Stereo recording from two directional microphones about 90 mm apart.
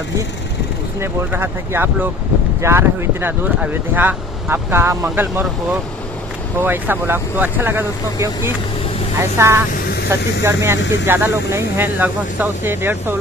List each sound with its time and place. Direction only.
1.0 s speech: 25° right (ahead or behind)
6.6 s speech: 20° right (ahead or behind)
9.2 s speech: 30° right (ahead or behind)